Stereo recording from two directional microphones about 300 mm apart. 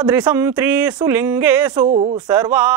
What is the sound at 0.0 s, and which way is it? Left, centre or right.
Speech, centre.